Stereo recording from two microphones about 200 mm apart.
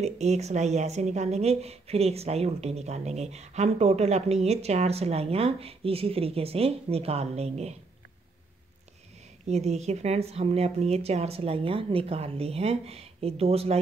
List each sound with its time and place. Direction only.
0.0 s a woman's voice: 35° right (ahead or behind)
9.5 s a woman's voice: 35° right (ahead or behind)